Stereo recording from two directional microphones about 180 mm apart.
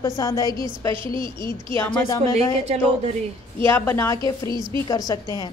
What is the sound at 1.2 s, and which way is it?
Speech, 25° right (ahead or behind).